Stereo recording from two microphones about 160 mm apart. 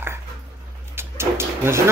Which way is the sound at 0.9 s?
15° right (ahead or behind).